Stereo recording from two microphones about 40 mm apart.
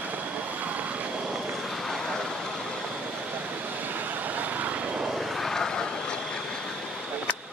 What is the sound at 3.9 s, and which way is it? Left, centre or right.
Vehicle, right.